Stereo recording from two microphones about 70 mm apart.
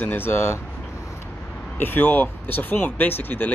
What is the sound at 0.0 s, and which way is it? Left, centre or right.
Speech, left.